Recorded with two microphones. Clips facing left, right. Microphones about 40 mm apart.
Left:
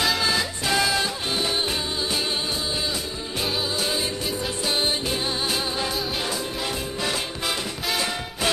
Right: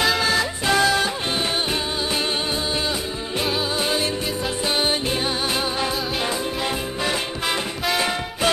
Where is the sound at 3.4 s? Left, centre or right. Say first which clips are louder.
Right 3 dB; centre.